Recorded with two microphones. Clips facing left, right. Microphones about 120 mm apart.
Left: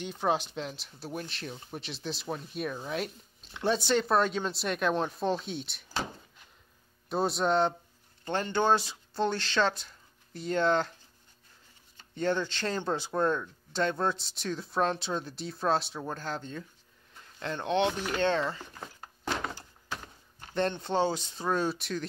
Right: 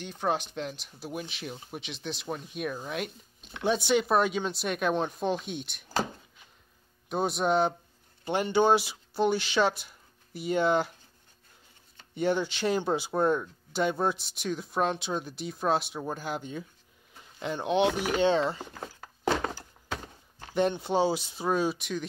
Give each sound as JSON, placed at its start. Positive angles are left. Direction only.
{"t": 0.0, "sound": "speech", "side_deg": 5}
{"t": 7.1, "sound": "speech", "side_deg": 0}
{"t": 12.2, "sound": "speech", "side_deg": -10}
{"t": 19.4, "sound": "a sound", "side_deg": -80}
{"t": 20.5, "sound": "speech", "side_deg": -10}